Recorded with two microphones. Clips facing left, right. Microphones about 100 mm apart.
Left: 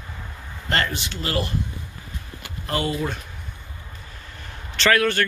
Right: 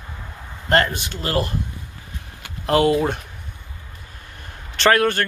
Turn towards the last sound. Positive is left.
turn(degrees=-45)  # may be behind; listen again after turning